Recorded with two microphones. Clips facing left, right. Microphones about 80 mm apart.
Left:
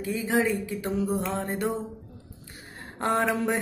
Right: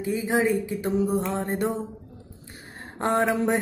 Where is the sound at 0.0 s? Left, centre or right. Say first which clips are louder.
Right 2 dB; right.